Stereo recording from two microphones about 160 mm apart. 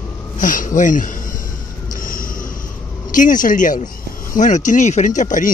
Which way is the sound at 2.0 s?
60° left (ahead or behind).